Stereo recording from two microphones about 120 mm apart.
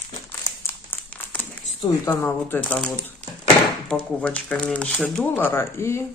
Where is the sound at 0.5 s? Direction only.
30° left (ahead or behind).